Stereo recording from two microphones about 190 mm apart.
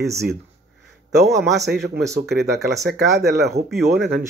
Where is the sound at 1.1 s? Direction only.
60° right (ahead or behind).